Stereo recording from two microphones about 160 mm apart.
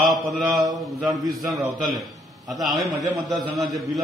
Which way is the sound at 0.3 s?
Centre (ahead or behind).